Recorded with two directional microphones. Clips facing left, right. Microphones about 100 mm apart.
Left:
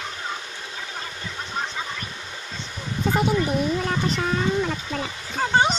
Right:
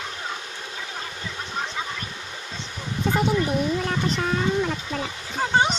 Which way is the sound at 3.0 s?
5° left (ahead or behind).